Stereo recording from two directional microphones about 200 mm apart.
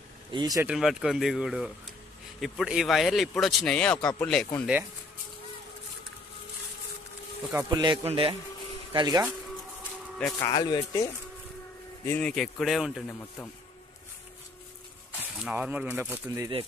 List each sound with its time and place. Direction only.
0.3 s a man's voice: 20° right (ahead or behind)
0.7 s speech: 5° right (ahead or behind)
7.5 s a man's voice: 20° right (ahead or behind)
10.4 s speech: 20° left (ahead or behind)
12.0 s speech: 10° left (ahead or behind)
15.3 s speech: 5° right (ahead or behind)